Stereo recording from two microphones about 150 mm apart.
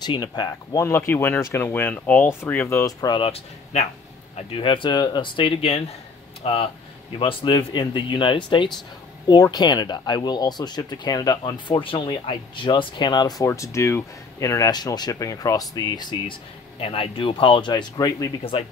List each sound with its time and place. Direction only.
0.0 s speech: 30° left (ahead or behind)
18.4 s speech: 40° left (ahead or behind)